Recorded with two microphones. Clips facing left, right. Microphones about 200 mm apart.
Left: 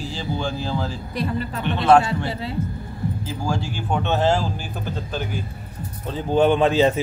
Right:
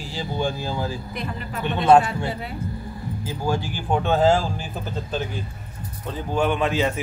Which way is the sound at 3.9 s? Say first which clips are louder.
Right 2 dB; 10° right (ahead or behind).